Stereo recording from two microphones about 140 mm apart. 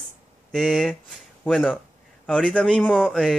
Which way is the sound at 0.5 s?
Centre (ahead or behind).